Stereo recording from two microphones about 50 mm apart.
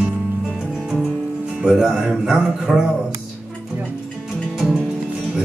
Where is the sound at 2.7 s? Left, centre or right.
Centre.